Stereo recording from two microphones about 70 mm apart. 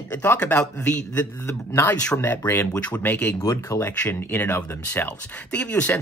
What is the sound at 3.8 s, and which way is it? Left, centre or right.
Speech, left.